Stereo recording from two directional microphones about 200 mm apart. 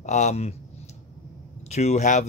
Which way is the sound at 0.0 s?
35° left (ahead or behind).